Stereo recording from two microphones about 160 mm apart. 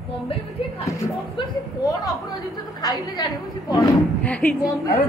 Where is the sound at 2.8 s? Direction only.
25° left (ahead or behind).